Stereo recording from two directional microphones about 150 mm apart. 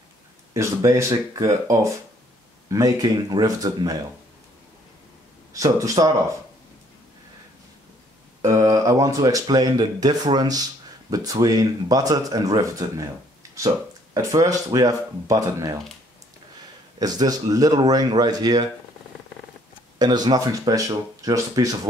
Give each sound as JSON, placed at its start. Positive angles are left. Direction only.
{"t": 0.5, "sound": "speech", "side_deg": -20}
{"t": 5.5, "sound": "speech", "side_deg": -20}
{"t": 8.4, "sound": "speech", "side_deg": -20}
{"t": 17.0, "sound": "speech", "side_deg": -25}
{"t": 20.0, "sound": "speech", "side_deg": -25}